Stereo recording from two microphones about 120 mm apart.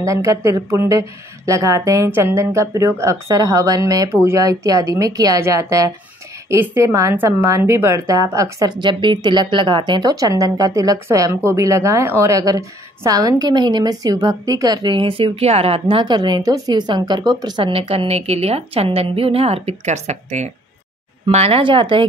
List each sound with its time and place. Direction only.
0.0 s a woman's voice: 25° right (ahead or behind)
8.8 s a woman's voice: 40° right (ahead or behind); by 20.5 s 70° right (ahead or behind)
21.3 s speech: 60° right (ahead or behind)